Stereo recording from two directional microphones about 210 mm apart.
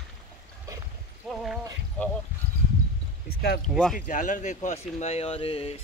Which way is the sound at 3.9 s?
35° left (ahead or behind).